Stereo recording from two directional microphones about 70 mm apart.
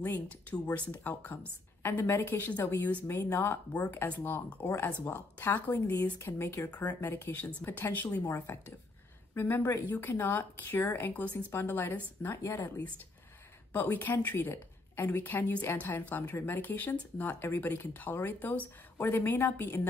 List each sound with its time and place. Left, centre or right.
0.0 s speech: left
8.5 s speech: left
12.4 s speech: left
13.7 s a woman's voice: left